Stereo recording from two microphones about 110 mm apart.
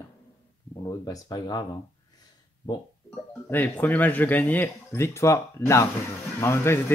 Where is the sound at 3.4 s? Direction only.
20° left (ahead or behind).